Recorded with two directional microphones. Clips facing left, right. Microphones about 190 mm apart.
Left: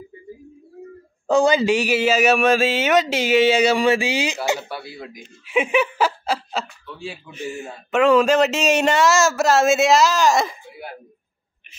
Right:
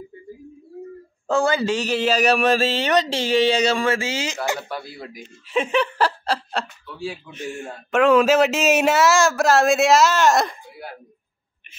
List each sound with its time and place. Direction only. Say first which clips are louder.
1.2 s speech: left 4 dB; 15° left (ahead or behind)
4.6 s speech: even; centre (ahead or behind)